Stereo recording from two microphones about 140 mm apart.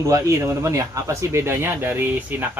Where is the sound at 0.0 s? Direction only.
20° right (ahead or behind).